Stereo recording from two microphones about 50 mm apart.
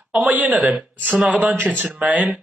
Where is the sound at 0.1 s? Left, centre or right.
Right.